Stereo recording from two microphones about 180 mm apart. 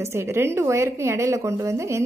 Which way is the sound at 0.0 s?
15° right (ahead or behind).